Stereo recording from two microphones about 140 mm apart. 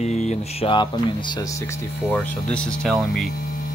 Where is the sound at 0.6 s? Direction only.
35° left (ahead or behind).